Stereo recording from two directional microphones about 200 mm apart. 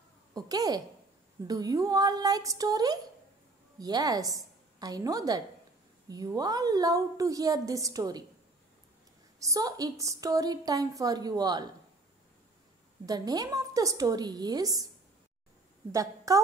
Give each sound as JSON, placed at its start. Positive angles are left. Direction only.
{"t": 0.3, "sound": "a woman's voice", "side_deg": -20}
{"t": 9.4, "sound": "a woman's voice", "side_deg": -15}
{"t": 13.0, "sound": "a woman's voice", "side_deg": -20}
{"t": 15.9, "sound": "a woman's voice", "side_deg": -15}